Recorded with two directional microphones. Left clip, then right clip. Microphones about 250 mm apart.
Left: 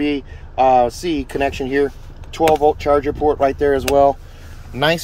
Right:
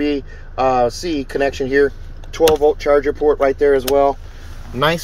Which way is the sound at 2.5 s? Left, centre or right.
Left.